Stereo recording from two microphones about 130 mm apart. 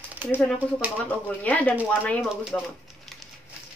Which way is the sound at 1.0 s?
10° left (ahead or behind).